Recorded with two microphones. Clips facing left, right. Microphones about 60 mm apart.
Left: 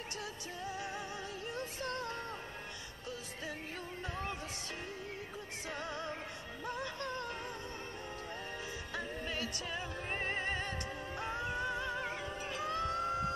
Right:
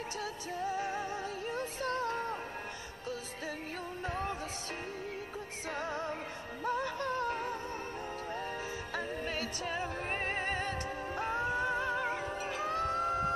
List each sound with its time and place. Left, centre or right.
0.6 s music: right
4.0 s music: right
5.8 s music: right
8.9 s music: right
12.7 s music: right